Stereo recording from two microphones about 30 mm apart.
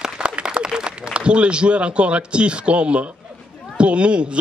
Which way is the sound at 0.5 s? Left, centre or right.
Right.